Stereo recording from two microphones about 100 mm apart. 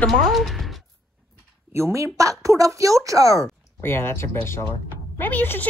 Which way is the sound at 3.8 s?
25° left (ahead or behind).